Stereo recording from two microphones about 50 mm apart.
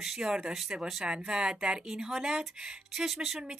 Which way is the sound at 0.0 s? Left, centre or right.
Centre.